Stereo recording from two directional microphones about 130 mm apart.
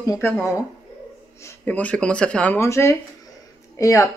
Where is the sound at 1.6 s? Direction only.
10° left (ahead or behind).